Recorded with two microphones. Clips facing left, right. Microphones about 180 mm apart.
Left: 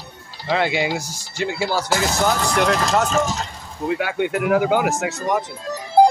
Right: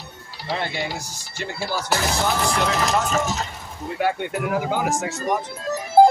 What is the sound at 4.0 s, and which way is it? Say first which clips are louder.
Speech: right 2 dB; 90° left.